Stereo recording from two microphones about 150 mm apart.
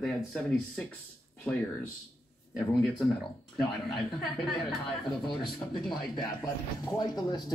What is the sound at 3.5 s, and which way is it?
A woman's voice, centre (ahead or behind).